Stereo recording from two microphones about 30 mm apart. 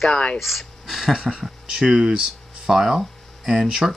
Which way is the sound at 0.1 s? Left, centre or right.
Left.